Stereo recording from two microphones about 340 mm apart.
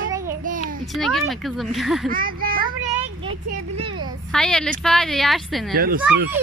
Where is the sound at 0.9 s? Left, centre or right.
Centre.